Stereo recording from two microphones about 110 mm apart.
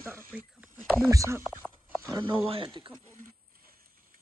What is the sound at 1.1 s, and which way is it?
Speech, 25° right (ahead or behind).